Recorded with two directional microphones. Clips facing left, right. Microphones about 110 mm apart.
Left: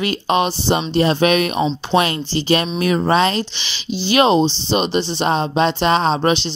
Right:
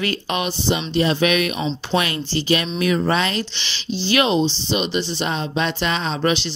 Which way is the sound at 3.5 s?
10° left (ahead or behind).